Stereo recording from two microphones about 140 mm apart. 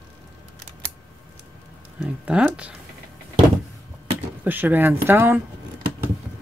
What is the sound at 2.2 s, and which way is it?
Speech, 10° right (ahead or behind).